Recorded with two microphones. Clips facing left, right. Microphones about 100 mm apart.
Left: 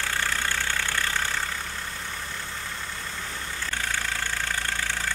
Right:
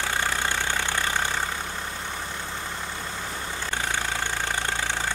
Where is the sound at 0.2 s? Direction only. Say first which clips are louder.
Right 2 dB; 20° right (ahead or behind).